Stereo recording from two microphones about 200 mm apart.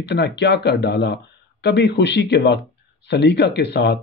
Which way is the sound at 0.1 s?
55° left (ahead or behind).